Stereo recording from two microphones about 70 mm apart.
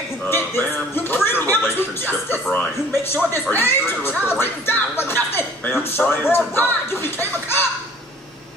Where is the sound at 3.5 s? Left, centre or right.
Left.